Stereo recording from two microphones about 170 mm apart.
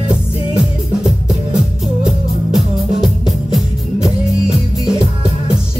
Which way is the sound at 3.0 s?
Centre (ahead or behind).